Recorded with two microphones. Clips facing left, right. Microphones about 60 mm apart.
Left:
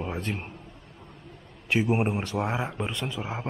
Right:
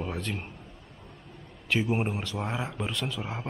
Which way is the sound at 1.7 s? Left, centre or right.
Centre.